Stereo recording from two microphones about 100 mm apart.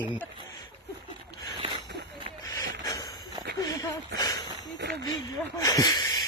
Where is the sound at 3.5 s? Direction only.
35° left (ahead or behind).